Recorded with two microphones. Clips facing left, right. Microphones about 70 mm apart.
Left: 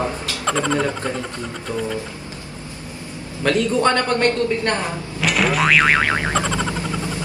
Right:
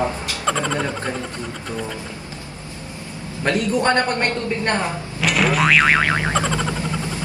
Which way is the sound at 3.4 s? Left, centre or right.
Right.